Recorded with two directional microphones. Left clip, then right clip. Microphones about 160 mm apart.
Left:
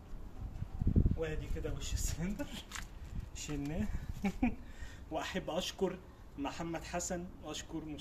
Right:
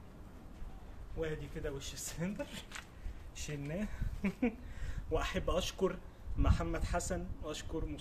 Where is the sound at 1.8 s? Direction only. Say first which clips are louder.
Right 1 dB; 40° right (ahead or behind).